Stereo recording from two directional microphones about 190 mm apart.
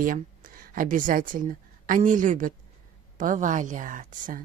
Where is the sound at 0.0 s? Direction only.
45° right (ahead or behind).